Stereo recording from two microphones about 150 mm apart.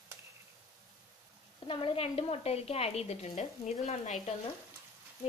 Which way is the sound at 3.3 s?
50° left (ahead or behind).